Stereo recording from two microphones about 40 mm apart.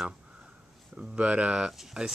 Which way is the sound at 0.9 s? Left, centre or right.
Centre.